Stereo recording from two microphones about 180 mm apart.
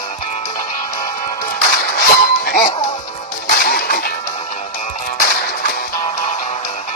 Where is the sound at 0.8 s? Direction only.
20° left (ahead or behind).